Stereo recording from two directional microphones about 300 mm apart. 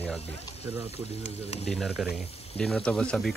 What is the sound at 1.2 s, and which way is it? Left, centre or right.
Speech, left.